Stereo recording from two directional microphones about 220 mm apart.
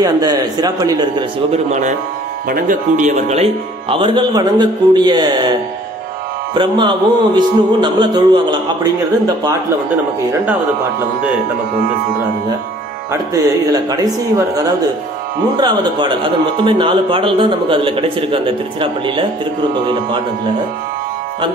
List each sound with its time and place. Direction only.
0.0 s a man's voice: 20° right (ahead or behind)
1.7 s speech: 35° right (ahead or behind)
13.8 s a man's voice: 15° right (ahead or behind)